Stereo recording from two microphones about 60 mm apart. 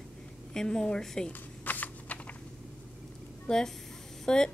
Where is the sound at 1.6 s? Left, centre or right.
Left.